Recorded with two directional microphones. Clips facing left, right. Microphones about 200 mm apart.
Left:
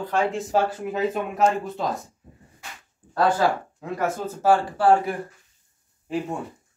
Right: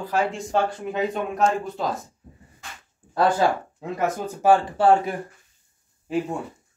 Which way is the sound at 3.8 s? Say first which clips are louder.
Right 1 dB; 15° right (ahead or behind).